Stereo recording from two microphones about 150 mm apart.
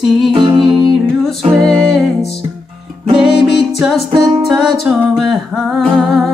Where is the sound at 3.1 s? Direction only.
Centre (ahead or behind).